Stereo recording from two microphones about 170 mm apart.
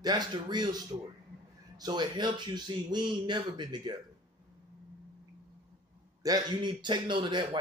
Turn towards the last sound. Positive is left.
turn(degrees=-25)  # may be behind; listen again after turning